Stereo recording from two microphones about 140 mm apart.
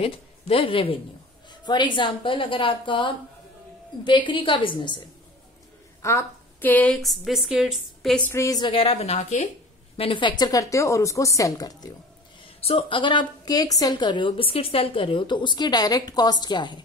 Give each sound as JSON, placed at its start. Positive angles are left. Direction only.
{"t": 0.0, "sound": "a woman's voice", "side_deg": 40}
{"t": 6.0, "sound": "a woman's voice", "side_deg": 15}
{"t": 7.0, "sound": "a woman's voice", "side_deg": 0}
{"t": 8.3, "sound": "a woman's voice", "side_deg": 20}
{"t": 8.5, "sound": "a woman's voice", "side_deg": 35}
{"t": 9.9, "sound": "a woman's voice", "side_deg": 40}
{"t": 12.5, "sound": "a woman's voice", "side_deg": 45}